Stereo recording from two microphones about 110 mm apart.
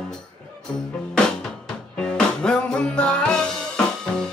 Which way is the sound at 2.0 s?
10° left (ahead or behind).